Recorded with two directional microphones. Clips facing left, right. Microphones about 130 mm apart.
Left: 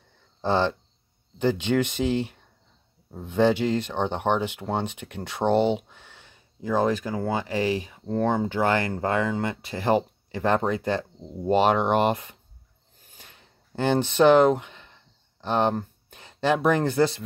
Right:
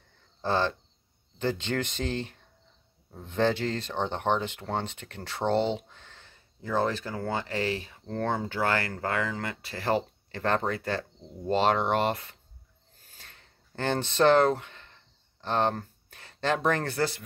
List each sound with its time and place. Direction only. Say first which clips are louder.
0.4 s speech: left 4 dB; 20° left (ahead or behind)
13.1 s a sound: left 3 dB; 15° left (ahead or behind)
15.4 s speech: left 4 dB; 15° left (ahead or behind)